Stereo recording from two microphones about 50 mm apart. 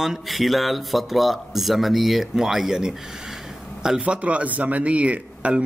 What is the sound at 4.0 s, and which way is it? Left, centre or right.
Speech, right.